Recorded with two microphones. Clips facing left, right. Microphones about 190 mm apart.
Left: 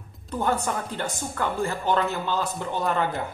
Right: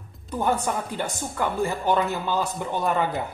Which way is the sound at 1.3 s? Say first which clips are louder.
Right 2 dB; 10° right (ahead or behind).